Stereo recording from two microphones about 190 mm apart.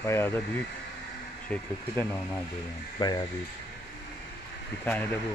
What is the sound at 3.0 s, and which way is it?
Speech, 20° left (ahead or behind).